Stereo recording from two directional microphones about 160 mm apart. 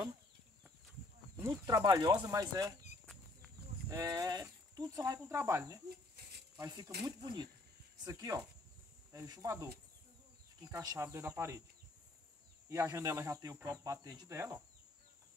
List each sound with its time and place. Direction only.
1.3 s speech: 20° right (ahead or behind)
3.9 s speech: 20° right (ahead or behind)
12.6 s speech: 20° right (ahead or behind)